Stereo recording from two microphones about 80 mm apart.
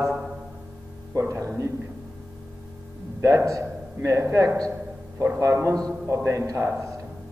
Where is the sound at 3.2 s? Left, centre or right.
Right.